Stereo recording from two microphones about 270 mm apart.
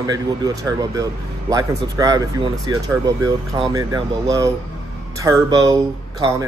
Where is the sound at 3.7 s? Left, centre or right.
Centre.